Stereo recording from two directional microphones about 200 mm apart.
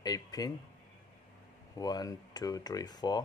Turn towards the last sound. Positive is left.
turn(degrees=20)  # may be behind; listen again after turning